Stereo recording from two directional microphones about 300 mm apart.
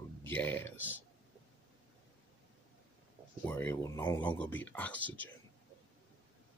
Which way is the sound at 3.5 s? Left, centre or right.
Centre.